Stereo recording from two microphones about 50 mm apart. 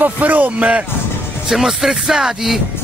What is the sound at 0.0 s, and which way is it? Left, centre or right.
Speech, right.